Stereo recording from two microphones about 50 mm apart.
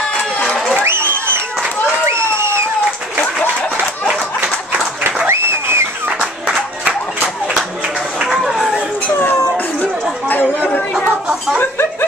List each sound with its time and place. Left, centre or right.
0.8 s a sound: right
2.0 s crowd: right
5.3 s a sound: right
8.2 s run: centre
10.2 s chatter: left
10.7 s chatter: left